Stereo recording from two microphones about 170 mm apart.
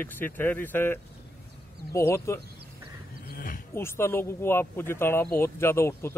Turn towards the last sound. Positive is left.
turn(degrees=15)  # may be behind; listen again after turning